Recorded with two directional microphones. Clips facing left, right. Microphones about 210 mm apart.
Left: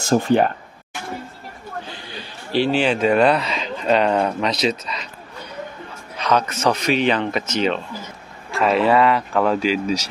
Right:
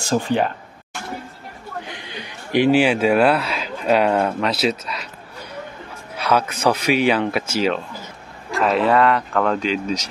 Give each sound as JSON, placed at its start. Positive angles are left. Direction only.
{"t": 0.0, "sound": "speech", "side_deg": 50}
{"t": 1.9, "sound": "speech", "side_deg": -20}
{"t": 6.1, "sound": "speech", "side_deg": -10}